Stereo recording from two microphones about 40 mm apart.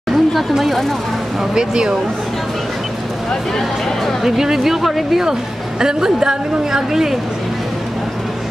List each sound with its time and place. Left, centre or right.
0.1 s a sound: centre
1.5 s speech: centre
4.2 s a woman's voice: centre
5.8 s a woman's voice: centre